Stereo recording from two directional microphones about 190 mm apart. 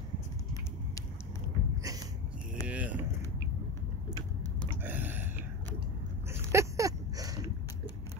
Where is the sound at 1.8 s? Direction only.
20° right (ahead or behind).